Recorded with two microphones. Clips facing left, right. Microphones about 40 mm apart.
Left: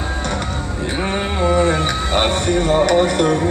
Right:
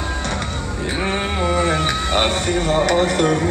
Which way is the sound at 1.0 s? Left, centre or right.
Centre.